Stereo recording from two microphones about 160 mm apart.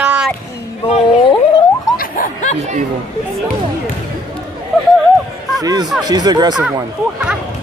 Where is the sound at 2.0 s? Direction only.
60° left (ahead or behind).